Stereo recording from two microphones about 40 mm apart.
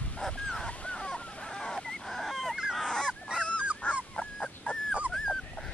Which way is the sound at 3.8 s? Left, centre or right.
Left.